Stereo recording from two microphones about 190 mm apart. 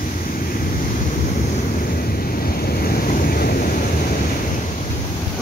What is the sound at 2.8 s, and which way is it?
Waves, 50° left (ahead or behind).